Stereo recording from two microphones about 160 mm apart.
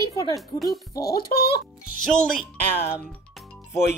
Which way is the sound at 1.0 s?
70° left (ahead or behind).